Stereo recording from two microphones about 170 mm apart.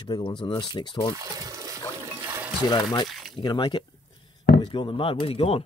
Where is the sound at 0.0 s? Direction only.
30° left (ahead or behind).